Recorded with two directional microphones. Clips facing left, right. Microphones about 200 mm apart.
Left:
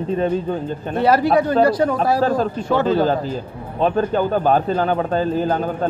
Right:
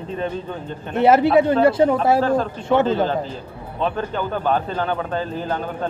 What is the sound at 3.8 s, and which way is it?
A man's voice, 40° left (ahead or behind).